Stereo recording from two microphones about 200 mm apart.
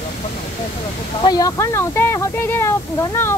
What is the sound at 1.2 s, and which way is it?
Speech, 20° left (ahead or behind).